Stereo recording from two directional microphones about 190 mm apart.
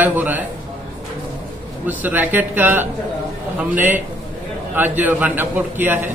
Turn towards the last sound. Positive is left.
turn(degrees=-10)  # may be behind; listen again after turning